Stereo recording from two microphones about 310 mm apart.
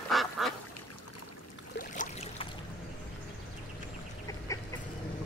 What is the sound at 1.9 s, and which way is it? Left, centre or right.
Boat, centre.